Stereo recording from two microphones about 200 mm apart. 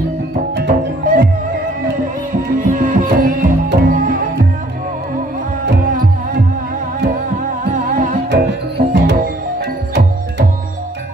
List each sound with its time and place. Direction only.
0.7 s music: 45° right (ahead or behind)
2.6 s music: 40° right (ahead or behind)
5.7 s music: 45° right (ahead or behind)
7.7 s music: 40° right (ahead or behind)
8.3 s music: 55° right (ahead or behind)